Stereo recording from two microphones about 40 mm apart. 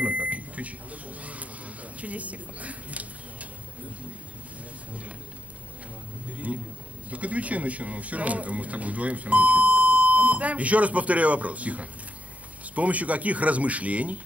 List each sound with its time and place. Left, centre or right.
0.0 s microwave oven: right
2.0 s speech: right
6.2 s a sound: right
7.1 s speech: right